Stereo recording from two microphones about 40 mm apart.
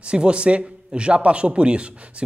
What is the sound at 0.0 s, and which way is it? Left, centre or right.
A man's voice, right.